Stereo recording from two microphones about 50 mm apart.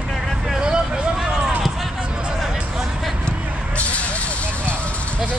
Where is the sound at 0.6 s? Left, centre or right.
Centre.